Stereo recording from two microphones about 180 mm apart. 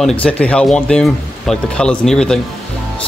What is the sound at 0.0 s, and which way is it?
Speech, 5° left (ahead or behind).